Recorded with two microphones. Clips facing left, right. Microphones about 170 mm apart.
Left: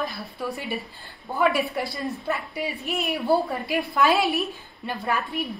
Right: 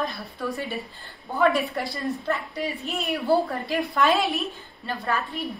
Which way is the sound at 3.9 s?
5° left (ahead or behind).